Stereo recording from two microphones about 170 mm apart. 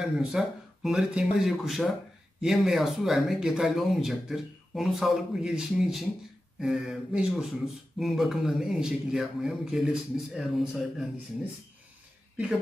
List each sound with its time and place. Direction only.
0.0 s speech: 5° right (ahead or behind)